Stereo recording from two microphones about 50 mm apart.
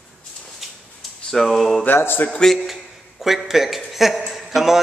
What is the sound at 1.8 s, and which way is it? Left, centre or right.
Speech, left.